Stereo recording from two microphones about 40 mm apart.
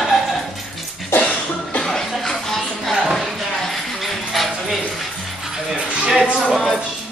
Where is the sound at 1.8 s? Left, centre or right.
Centre.